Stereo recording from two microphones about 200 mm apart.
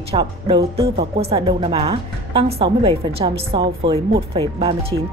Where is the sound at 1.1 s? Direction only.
25° right (ahead or behind).